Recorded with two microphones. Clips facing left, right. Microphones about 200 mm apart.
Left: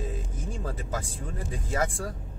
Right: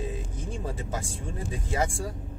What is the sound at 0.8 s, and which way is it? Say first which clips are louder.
Speech: even; 25° right (ahead or behind).